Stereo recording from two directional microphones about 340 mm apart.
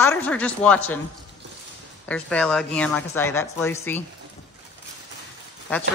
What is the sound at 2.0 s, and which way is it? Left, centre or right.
A woman's voice, centre.